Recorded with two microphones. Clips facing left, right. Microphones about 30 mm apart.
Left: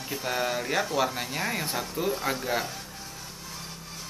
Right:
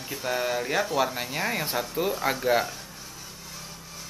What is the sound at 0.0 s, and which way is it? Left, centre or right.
Speech, centre.